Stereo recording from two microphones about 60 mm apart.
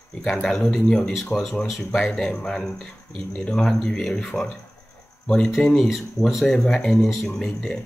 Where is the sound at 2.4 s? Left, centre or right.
Centre; by 5.5 s left.